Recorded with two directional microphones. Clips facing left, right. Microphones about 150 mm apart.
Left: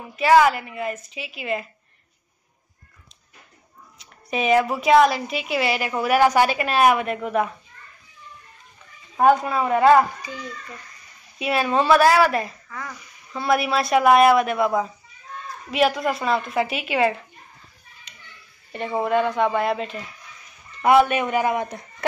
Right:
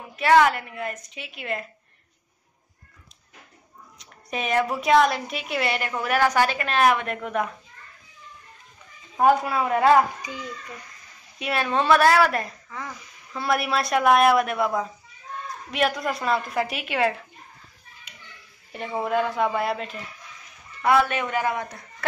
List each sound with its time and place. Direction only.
0.1 s a woman's voice: 5° left (ahead or behind)
4.0 s a woman's voice: centre (ahead or behind)
9.1 s a woman's voice: centre (ahead or behind)
10.2 s a child's voice: 15° right (ahead or behind)
11.3 s a woman's voice: 5° left (ahead or behind)
12.6 s speech: 20° right (ahead or behind)
13.3 s a woman's voice: centre (ahead or behind)
18.1 s a sound: 5° right (ahead or behind)
18.7 s a woman's voice: centre (ahead or behind)
20.8 s a man's voice: 20° left (ahead or behind)